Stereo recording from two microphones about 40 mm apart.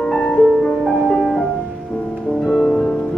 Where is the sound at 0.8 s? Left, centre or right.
Centre.